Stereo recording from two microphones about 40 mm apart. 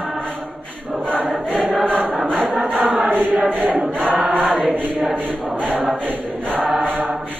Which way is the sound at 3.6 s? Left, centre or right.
Right.